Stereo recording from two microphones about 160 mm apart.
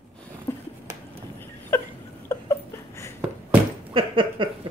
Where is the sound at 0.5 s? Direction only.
15° left (ahead or behind).